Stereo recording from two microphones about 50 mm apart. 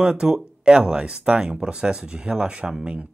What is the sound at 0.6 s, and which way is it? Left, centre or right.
Speech, centre.